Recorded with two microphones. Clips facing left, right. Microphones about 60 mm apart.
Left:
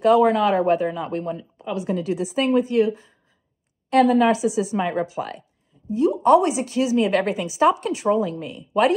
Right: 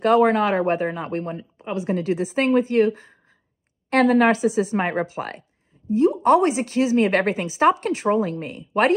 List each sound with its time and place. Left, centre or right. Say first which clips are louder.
0.0 s speech: left 1 dB; right